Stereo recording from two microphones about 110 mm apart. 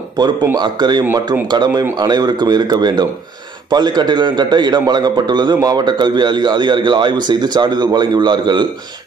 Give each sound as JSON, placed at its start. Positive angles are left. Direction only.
{"t": 0.2, "sound": "a man's voice", "side_deg": -40}